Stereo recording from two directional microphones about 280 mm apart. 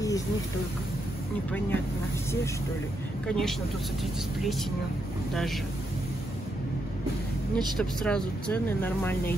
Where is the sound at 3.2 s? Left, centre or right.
Centre.